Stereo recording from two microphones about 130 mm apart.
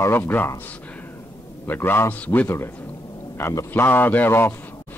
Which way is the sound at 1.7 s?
15° left (ahead or behind).